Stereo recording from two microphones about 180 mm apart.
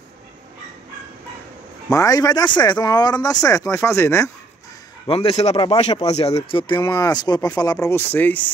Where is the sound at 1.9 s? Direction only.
20° left (ahead or behind).